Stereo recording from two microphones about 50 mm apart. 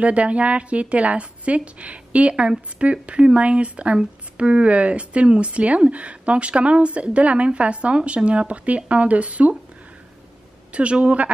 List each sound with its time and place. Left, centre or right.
0.0 s speech: right
10.7 s speech: right